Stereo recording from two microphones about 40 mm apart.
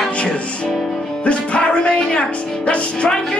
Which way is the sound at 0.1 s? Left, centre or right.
Left.